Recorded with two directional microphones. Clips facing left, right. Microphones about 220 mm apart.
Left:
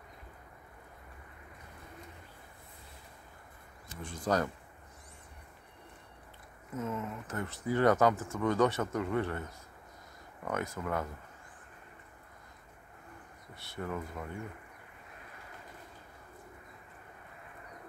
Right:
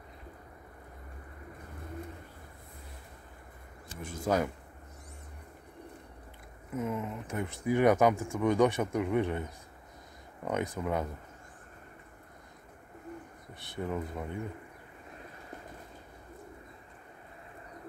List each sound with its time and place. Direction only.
4.0 s speech: 10° right (ahead or behind)
6.7 s speech: 15° right (ahead or behind)
13.6 s speech: 15° right (ahead or behind)